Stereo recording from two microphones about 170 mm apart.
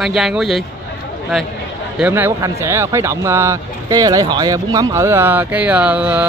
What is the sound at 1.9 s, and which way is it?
Speech, 10° right (ahead or behind).